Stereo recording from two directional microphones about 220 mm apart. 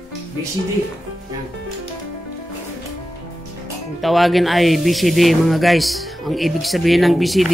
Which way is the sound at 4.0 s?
Centre (ahead or behind).